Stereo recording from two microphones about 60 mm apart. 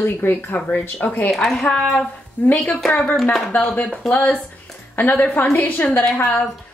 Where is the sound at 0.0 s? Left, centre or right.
Left.